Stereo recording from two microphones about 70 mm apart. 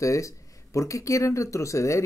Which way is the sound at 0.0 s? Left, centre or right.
Left.